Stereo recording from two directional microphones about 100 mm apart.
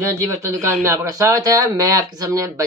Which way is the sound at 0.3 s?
30° right (ahead or behind).